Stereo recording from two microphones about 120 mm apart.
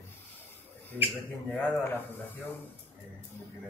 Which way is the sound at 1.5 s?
15° left (ahead or behind).